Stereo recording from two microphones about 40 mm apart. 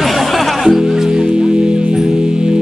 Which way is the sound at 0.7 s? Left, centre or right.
Centre.